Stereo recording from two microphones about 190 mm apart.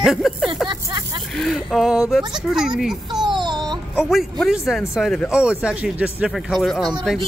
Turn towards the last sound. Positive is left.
turn(degrees=0)  # may be behind; listen again after turning